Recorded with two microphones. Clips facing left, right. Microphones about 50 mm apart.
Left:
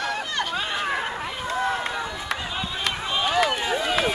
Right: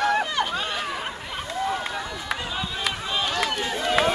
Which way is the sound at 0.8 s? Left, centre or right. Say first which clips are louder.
Left 4 dB; left.